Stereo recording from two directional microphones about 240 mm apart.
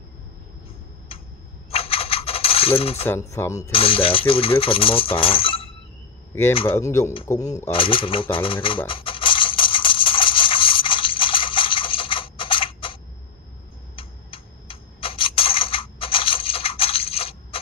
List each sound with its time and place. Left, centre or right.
1.7 s coin: left
3.1 s speech: centre
3.7 s speech: left
6.7 s a sound: centre